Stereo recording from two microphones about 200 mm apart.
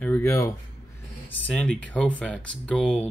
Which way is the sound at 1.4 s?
5° left (ahead or behind).